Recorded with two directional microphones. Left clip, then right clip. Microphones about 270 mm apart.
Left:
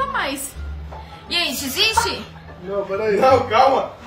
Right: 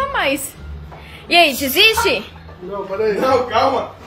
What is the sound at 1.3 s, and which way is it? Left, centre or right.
Speech, centre.